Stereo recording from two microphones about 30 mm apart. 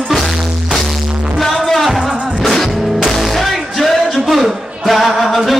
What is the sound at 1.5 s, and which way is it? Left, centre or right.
Music, centre.